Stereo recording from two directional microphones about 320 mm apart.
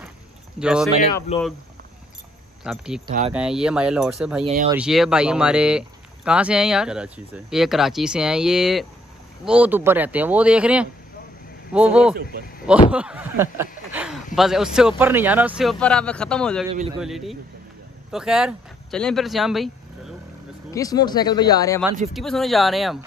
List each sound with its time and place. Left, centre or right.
0.6 s speech: centre
1.3 s speech: left
2.6 s speech: centre
3.1 s speech: right
3.3 s speech: centre
20.7 s speech: centre